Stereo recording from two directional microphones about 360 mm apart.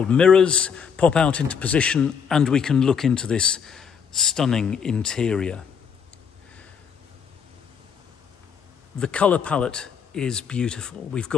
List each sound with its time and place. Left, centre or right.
0.0 s a man's voice: centre
9.0 s a man's voice: centre